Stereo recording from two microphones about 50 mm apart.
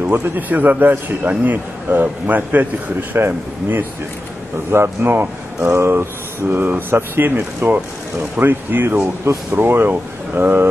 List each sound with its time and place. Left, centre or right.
0.1 s speech: right
4.8 s speech: right
5.6 s speech: right
6.4 s speech: right
9.0 s speech: right
9.5 s speech: right